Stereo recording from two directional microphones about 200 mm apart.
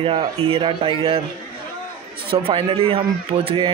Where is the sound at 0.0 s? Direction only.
25° right (ahead or behind).